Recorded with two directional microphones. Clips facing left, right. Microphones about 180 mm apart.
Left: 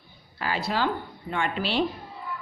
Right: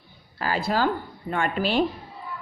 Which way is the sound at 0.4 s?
45° right (ahead or behind).